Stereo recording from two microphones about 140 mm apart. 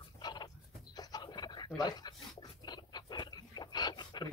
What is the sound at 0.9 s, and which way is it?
Bird, 30° left (ahead or behind).